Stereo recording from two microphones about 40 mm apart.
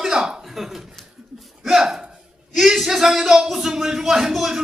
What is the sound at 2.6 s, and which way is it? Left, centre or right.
Speech, centre.